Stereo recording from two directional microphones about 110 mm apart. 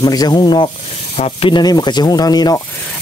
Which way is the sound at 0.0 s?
35° left (ahead or behind).